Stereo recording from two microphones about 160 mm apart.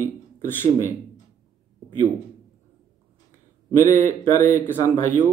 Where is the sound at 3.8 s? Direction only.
15° left (ahead or behind).